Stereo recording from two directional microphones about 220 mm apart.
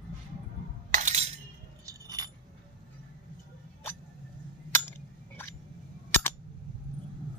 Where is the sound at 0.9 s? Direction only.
30° right (ahead or behind).